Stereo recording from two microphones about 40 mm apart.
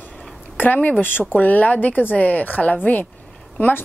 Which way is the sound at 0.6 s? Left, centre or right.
Left.